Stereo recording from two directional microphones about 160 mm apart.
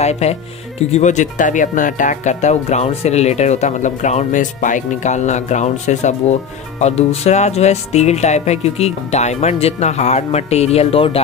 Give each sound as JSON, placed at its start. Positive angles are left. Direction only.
{"t": 0.0, "sound": "speech", "side_deg": 45}